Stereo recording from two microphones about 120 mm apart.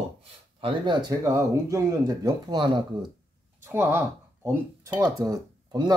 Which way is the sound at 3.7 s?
20° right (ahead or behind).